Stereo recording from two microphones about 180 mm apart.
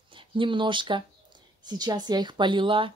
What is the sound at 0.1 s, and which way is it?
Speech, 30° right (ahead or behind).